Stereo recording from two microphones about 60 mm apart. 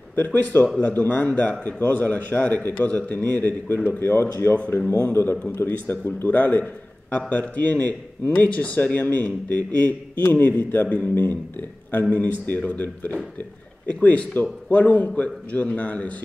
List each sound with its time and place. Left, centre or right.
0.1 s speech: left
5.1 s speech: left